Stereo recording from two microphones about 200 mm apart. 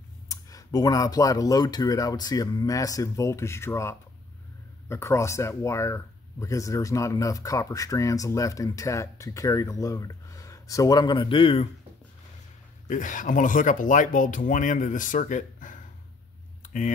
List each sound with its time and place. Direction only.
0.3 s speech: 15° left (ahead or behind)
12.8 s speech: 40° left (ahead or behind)
16.6 s a sound: 40° left (ahead or behind)